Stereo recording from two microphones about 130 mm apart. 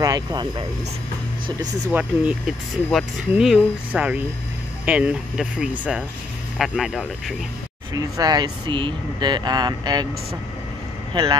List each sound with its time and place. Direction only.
0.0 s speech: 30° right (ahead or behind)
1.9 s speech: 15° right (ahead or behind)
2.4 s speech: centre (ahead or behind)
7.9 s speech: 30° right (ahead or behind)